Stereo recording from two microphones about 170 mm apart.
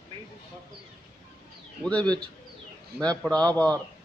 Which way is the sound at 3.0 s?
5° left (ahead or behind).